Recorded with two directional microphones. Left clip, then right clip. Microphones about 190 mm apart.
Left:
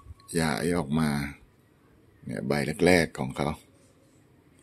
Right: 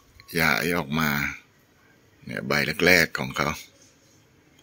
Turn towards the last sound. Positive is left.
turn(degrees=10)  # may be behind; listen again after turning